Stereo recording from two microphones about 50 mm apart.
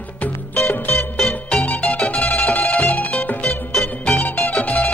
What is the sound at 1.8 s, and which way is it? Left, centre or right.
Music, left.